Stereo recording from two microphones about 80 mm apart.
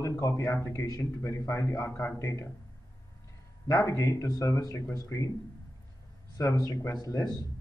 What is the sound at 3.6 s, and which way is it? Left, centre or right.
Speech, left.